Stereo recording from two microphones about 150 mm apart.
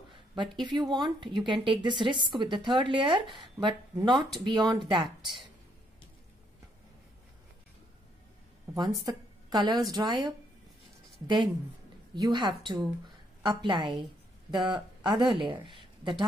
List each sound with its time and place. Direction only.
0.1 s a woman's voice: 30° right (ahead or behind)
5.0 s a woman's voice: centre (ahead or behind)
9.0 s a woman's voice: 30° right (ahead or behind)
15.0 s a woman's voice: 30° right (ahead or behind)